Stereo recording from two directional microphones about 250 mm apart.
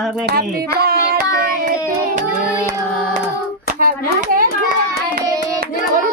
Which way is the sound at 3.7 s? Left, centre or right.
Right.